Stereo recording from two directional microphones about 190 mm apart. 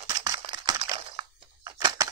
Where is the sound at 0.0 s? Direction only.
20° right (ahead or behind).